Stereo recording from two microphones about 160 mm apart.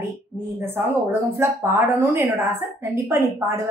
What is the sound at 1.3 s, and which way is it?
A woman's voice, 15° right (ahead or behind).